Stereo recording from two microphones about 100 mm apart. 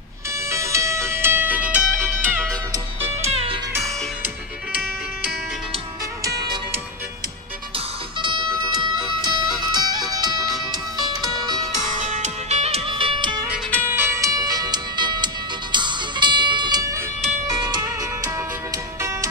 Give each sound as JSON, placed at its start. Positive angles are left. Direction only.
{"t": 0.5, "sound": "music", "side_deg": -30}
{"t": 3.2, "sound": "music", "side_deg": -85}
{"t": 8.2, "sound": "music", "side_deg": -50}
{"t": 12.4, "sound": "music", "side_deg": -90}
{"t": 13.8, "sound": "music", "side_deg": -25}